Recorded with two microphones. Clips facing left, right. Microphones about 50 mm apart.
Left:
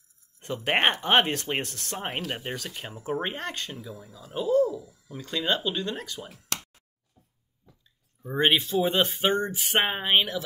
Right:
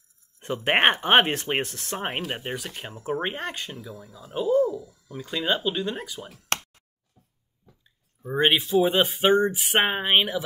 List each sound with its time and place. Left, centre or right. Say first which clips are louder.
0.7 s speech: right 3 dB; right
2.9 s speech: right 2 dB; centre
3.2 s speech: right 2 dB; centre
3.7 s speech: right 1 dB; centre
4.7 s speech: right 3 dB; centre
5.1 s speech: right 1 dB; centre
6.5 s chopping: right 7 dB; right
8.2 s speech: right 1 dB; centre